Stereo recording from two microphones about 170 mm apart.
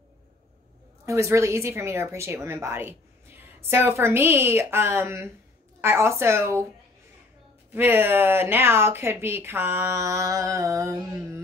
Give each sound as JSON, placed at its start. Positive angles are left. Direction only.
{"t": 1.0, "sound": "speech", "side_deg": -15}
{"t": 7.7, "sound": "speech", "side_deg": -10}